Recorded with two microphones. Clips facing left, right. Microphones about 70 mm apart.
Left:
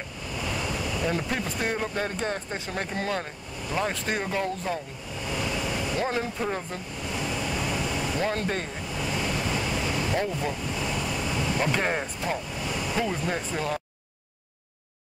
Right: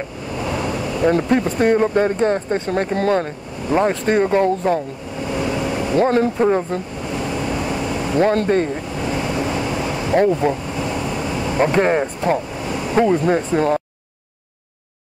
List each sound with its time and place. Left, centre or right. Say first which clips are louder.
0.4 s speech: right 8 dB; right
5.2 s vehicle: right 8 dB; right
5.9 s speech: right 15 dB; right
7.2 s air conditioning: right 7 dB; right
8.9 s vehicle: right 4 dB; right
10.1 s air conditioning: right 12 dB; right
12.6 s vehicle: right 7 dB; right
13.1 s speech: right 12 dB; right